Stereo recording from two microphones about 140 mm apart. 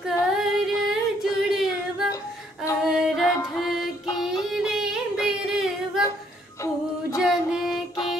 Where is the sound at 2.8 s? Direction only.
5° right (ahead or behind).